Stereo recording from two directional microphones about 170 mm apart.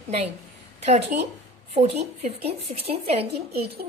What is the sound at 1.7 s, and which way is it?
A woman's voice, 35° right (ahead or behind).